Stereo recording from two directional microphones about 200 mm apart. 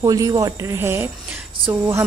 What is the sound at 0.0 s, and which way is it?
Speech, 20° right (ahead or behind).